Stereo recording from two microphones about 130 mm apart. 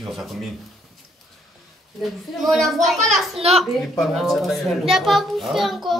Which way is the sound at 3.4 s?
50° right (ahead or behind).